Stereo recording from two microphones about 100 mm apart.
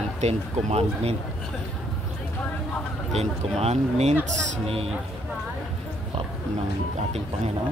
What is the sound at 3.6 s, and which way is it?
Speech, 90° right.